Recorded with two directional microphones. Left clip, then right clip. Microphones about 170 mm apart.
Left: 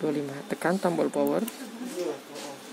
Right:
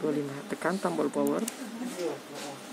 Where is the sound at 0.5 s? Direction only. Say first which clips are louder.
Left 5 dB; 25° left (ahead or behind).